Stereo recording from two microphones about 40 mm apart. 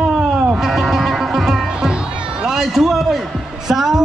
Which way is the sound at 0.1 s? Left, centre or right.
Centre.